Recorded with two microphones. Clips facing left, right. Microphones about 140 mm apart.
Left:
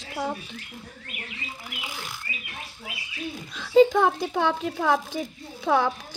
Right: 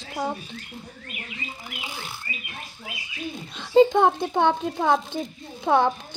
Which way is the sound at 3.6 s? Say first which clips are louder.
Right 1 dB; 30° right (ahead or behind).